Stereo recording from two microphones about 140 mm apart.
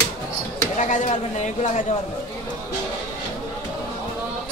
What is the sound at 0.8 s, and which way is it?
Speech, 65° left (ahead or behind).